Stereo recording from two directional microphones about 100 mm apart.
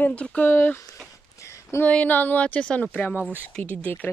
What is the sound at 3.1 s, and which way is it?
Speech, 15° right (ahead or behind).